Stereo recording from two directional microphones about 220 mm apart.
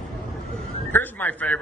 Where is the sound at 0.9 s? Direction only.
10° left (ahead or behind).